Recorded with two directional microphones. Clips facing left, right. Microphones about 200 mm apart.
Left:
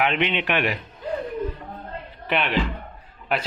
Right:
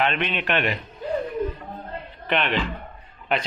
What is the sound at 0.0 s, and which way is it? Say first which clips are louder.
Speech: left 2 dB; 15° left (ahead or behind).